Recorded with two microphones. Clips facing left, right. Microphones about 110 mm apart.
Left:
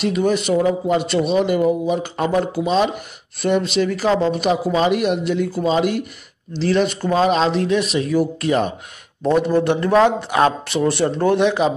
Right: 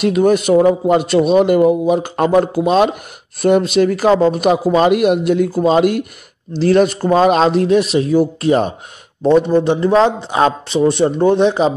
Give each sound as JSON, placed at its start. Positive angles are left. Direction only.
{"t": 0.0, "sound": "speech", "side_deg": -50}
{"t": 9.2, "sound": "a man's voice", "side_deg": -20}